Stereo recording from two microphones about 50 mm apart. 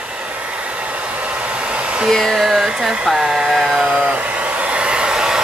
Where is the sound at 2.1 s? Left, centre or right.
Centre.